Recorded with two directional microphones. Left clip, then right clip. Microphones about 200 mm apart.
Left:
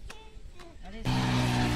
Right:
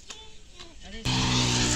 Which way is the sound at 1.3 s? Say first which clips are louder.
Right 4 dB; 30° left (ahead or behind).